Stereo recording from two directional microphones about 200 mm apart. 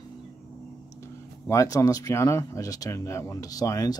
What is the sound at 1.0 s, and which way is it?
Speech, 15° left (ahead or behind).